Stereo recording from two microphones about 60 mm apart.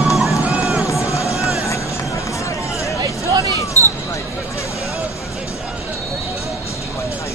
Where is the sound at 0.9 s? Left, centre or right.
Left.